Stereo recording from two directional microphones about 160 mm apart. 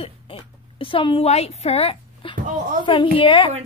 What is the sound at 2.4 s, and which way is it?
Speech, 60° right (ahead or behind).